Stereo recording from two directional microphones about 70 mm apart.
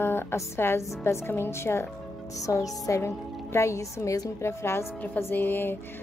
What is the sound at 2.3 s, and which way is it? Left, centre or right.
Music, left.